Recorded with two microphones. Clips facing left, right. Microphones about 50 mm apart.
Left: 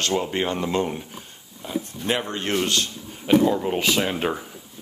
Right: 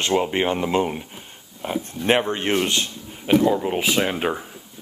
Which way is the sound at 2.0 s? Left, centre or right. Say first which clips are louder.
Right 7 dB; right.